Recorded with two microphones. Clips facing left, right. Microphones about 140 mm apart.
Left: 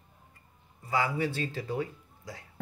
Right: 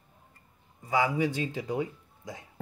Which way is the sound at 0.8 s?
15° right (ahead or behind).